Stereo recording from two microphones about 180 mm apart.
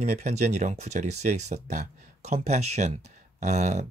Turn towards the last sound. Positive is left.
turn(degrees=-40)  # may be behind; listen again after turning